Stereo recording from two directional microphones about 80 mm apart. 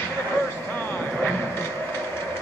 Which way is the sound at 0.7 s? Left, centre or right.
Left.